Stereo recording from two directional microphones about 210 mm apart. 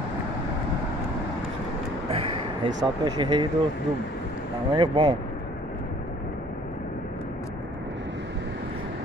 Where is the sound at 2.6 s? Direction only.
20° right (ahead or behind).